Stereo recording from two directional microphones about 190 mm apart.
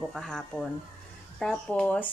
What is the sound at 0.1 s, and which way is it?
A woman's voice, 5° left (ahead or behind).